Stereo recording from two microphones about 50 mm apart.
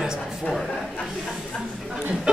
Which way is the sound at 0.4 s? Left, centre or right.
Centre.